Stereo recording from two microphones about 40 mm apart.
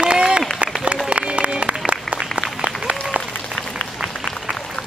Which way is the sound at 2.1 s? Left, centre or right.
Centre.